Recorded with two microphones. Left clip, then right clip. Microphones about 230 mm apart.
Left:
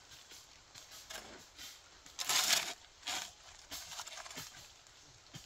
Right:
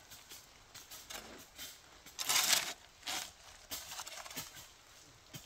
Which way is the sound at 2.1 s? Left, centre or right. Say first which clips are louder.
Even; centre.